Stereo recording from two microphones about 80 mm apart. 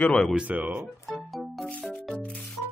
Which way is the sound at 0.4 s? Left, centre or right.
Centre.